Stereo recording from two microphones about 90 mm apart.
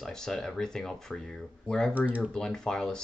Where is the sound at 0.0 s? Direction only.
5° left (ahead or behind).